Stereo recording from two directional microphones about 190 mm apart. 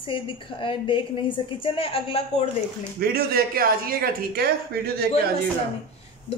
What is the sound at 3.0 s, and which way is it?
Speech, 55° right (ahead or behind).